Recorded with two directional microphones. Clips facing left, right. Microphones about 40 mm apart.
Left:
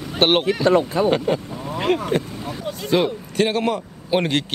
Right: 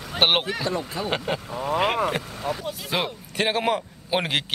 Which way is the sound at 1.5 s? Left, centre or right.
Right.